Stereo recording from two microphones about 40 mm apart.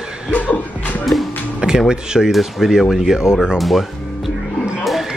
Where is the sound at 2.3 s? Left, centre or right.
Centre.